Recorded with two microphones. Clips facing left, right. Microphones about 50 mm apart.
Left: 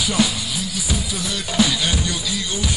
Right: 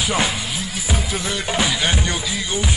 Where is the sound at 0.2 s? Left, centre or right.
Right.